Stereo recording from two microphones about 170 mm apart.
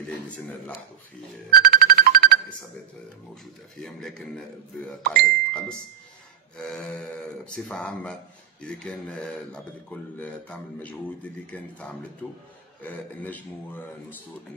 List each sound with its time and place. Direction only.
1.5 s music: 60° right (ahead or behind)
3.8 s speech: 5° left (ahead or behind)
12.8 s speech: 10° left (ahead or behind)